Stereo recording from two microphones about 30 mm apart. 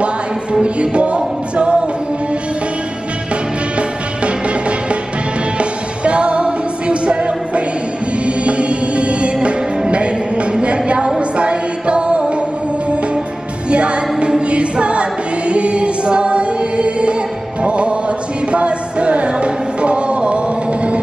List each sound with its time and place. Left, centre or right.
0.0 s music: right
5.6 s music: right
10.6 s a sound: right
11.1 s music: right
13.7 s music: right
14.4 s choir: right
17.6 s music: right